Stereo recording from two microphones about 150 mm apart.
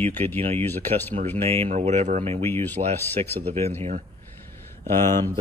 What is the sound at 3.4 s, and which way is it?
Speech, 45° right (ahead or behind).